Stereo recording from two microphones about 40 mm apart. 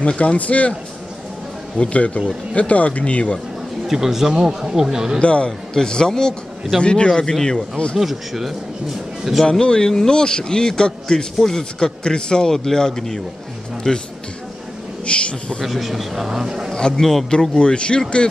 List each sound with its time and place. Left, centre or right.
0.0 s speech: left
1.8 s speech: left
3.8 s speech: centre
5.2 s speech: left
5.8 s a man's voice: centre
7.1 s a man's voice: centre
8.0 s speech: centre
9.5 s a man's voice: left
15.0 s speech: left
15.6 s speech: centre
16.7 s a man's voice: centre
17.3 s speech: left